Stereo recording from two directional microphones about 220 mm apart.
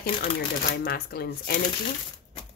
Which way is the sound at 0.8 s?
45° left (ahead or behind).